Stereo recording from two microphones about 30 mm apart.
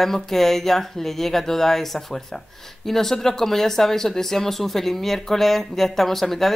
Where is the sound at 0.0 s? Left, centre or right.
Centre.